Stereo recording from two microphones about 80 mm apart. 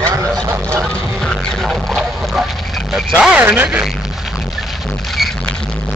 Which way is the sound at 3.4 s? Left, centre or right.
Right.